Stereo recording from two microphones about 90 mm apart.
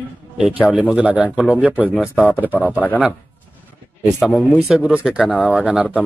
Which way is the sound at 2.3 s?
20° left (ahead or behind).